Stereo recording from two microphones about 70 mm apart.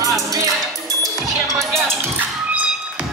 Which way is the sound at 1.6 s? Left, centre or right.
Centre.